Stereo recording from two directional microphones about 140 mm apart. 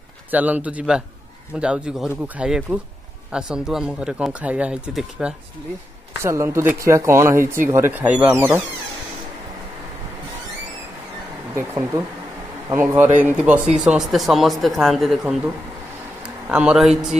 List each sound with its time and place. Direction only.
0.3 s speech: 10° right (ahead or behind)
6.2 s speech: 20° right (ahead or behind)
11.5 s speech: 20° right (ahead or behind); by 17.2 s 5° right (ahead or behind)